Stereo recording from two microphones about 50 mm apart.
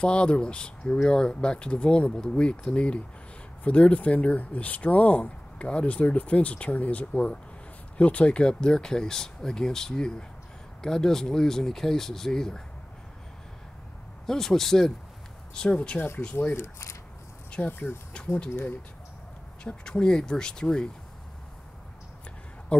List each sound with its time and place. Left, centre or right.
0.0 s speech: left
14.2 s speech: centre
15.5 s speech: centre
16.5 s speech: left
17.5 s speech: left
18.1 s speech: centre
19.6 s speech: centre